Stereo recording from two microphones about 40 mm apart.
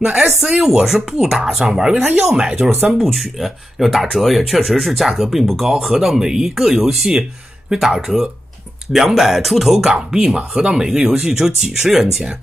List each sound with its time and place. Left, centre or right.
0.4 s speech: centre
3.0 s speech: centre